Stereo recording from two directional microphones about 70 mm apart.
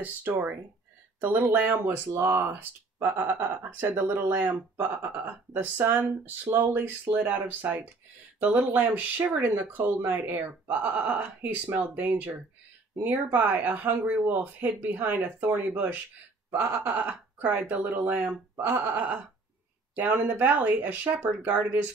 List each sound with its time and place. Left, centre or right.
0.0 s speech: right